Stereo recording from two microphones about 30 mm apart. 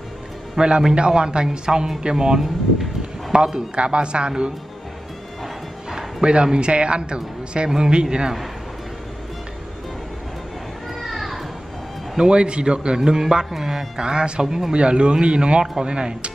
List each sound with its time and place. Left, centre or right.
0.6 s a man's voice: right
3.7 s a man's voice: right
6.2 s a man's voice: right
11.0 s children playing: centre
12.2 s a man's voice: right
13.5 s music: centre
13.9 s a man's voice: right
14.4 s music: centre
14.7 s a man's voice: right